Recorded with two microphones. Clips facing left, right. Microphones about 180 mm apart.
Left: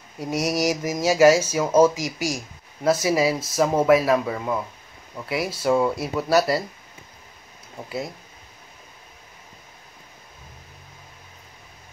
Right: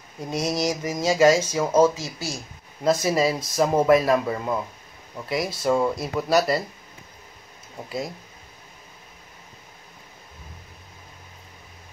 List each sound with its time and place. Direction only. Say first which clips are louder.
0.2 s speech: left 2 dB; 10° left (ahead or behind)